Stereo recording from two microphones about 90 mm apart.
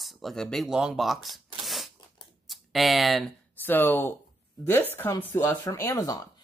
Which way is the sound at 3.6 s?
20° left (ahead or behind).